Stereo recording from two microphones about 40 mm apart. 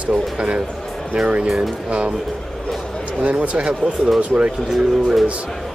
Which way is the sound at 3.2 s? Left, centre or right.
Right.